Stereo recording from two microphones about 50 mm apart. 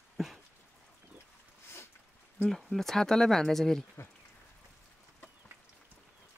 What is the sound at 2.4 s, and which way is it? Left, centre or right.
Speech, centre.